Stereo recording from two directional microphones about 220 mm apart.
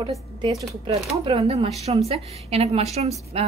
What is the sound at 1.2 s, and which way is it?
A woman's voice, 30° right (ahead or behind).